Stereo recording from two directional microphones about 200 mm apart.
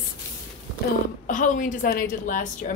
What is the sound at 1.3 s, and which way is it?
A woman's voice, 40° left (ahead or behind).